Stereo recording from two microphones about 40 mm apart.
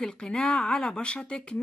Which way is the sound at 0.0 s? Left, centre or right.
Centre.